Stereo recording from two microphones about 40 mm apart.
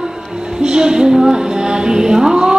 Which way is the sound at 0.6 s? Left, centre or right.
Centre.